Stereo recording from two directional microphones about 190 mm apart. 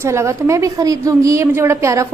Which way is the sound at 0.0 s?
15° right (ahead or behind).